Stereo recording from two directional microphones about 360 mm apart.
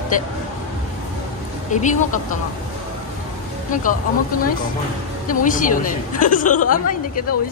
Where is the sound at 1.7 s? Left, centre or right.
Left.